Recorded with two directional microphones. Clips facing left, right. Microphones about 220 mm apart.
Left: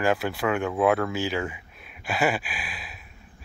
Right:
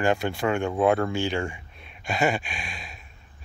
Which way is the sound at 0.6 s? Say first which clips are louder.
Right 1 dB; 30° right (ahead or behind).